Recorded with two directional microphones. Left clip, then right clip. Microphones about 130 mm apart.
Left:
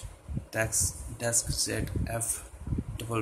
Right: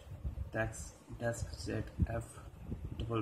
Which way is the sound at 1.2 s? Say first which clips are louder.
Left 9 dB; 5° left (ahead or behind).